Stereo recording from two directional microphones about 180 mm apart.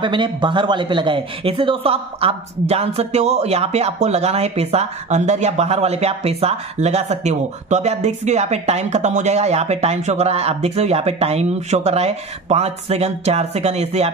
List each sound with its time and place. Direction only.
0.0 s speech: 25° right (ahead or behind)